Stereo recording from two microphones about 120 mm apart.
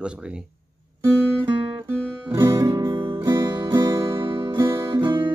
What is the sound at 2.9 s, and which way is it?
Music, 40° right (ahead or behind).